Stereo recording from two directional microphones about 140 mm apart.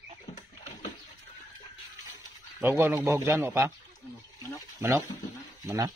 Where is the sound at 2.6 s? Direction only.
20° right (ahead or behind).